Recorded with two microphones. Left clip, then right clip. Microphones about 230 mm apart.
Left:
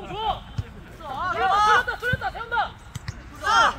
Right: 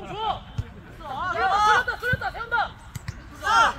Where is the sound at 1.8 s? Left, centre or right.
Centre.